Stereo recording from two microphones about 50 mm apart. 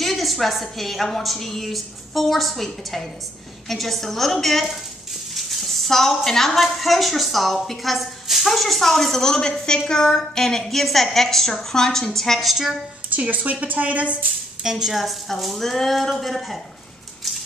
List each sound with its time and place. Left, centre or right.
0.0 s a woman's voice: centre
13.1 s a woman's voice: right
14.6 s a woman's voice: centre